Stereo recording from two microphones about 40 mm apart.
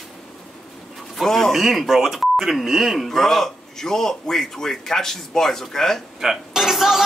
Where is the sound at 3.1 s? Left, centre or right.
Centre.